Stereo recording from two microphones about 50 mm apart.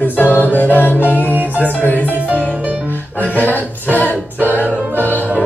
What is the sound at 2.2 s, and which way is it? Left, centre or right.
Music, right.